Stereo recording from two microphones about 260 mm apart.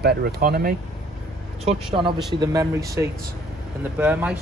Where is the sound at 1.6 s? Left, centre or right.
Right.